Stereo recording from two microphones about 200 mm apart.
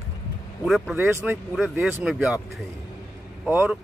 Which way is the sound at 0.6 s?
Centre (ahead or behind).